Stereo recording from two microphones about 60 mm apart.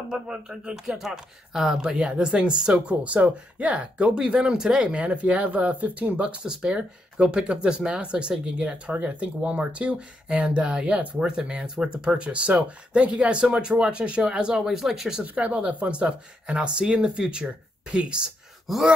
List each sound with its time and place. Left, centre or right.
0.1 s speech: centre
15.3 s speech: right